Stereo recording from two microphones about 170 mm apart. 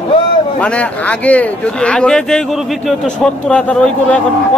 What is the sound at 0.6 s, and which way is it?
A man's voice, 10° left (ahead or behind).